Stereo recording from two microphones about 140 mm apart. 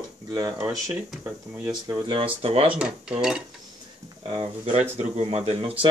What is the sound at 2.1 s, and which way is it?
Speech, 40° right (ahead or behind).